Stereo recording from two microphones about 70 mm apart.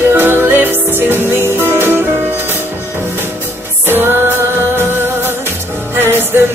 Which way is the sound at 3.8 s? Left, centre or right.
Right.